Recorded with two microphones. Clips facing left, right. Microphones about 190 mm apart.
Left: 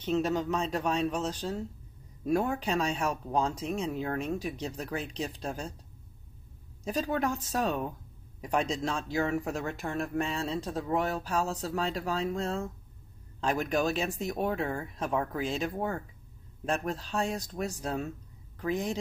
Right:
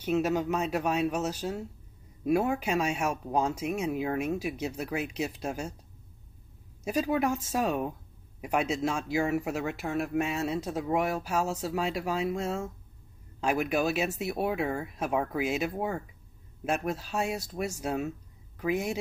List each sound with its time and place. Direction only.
0.0 s speech: 10° right (ahead or behind)
6.8 s speech: 10° right (ahead or behind)